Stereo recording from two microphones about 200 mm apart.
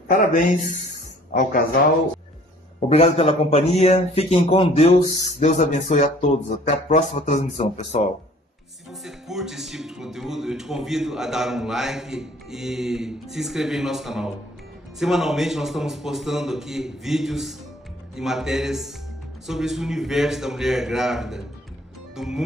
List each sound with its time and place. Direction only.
0.1 s speech: 40° left (ahead or behind)
2.9 s speech: 30° left (ahead or behind)
9.0 s speech: centre (ahead or behind)
22.1 s music: centre (ahead or behind)